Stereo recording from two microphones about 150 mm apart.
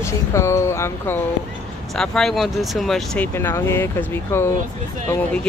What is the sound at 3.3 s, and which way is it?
Speech, 15° left (ahead or behind).